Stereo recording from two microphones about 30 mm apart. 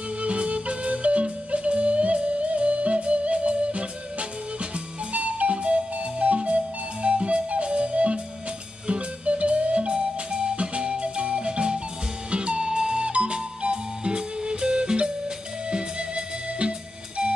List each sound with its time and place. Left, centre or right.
0.2 s music: right